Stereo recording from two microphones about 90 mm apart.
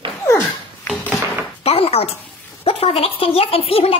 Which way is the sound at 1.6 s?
90° left.